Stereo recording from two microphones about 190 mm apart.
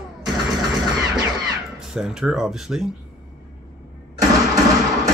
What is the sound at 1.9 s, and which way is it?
Speech, 5° right (ahead or behind).